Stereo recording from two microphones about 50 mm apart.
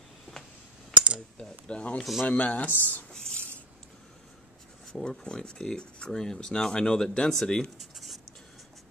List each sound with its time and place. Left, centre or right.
1.7 s speech: left
3.1 s a sound: centre
5.0 s speech: centre